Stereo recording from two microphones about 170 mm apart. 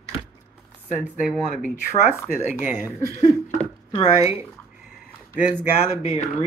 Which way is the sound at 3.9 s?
35° left (ahead or behind).